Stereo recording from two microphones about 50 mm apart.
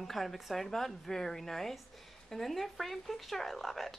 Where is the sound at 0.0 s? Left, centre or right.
Centre.